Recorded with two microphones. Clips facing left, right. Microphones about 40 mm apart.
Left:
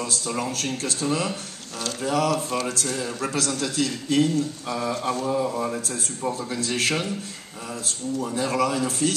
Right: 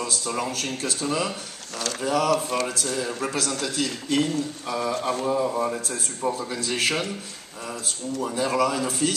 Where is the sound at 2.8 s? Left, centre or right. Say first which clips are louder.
Even; centre.